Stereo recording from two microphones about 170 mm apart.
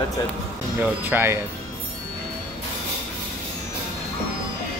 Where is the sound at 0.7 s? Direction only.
10° right (ahead or behind).